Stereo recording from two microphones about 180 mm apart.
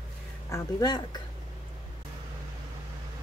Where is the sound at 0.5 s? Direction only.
20° left (ahead or behind).